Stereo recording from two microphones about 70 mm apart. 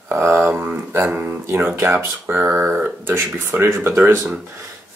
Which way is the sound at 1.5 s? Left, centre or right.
Right.